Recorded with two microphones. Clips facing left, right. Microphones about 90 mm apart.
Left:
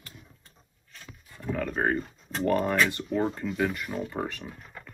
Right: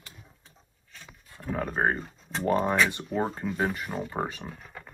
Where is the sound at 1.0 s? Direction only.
20° right (ahead or behind).